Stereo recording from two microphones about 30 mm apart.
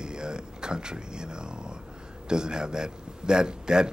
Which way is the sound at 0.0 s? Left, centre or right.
Right.